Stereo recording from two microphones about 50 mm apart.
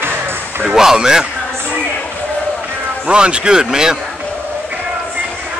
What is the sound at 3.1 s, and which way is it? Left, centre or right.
Speech, centre.